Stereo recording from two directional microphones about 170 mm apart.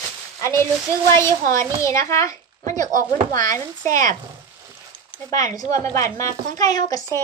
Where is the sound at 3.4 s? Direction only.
20° left (ahead or behind).